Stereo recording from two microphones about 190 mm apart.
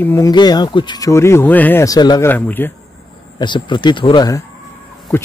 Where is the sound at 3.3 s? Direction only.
25° left (ahead or behind).